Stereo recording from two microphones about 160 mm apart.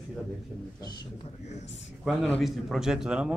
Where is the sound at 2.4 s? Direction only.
Centre (ahead or behind).